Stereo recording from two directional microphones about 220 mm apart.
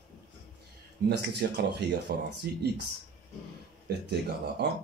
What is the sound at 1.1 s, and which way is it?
A man's voice, 50° right (ahead or behind).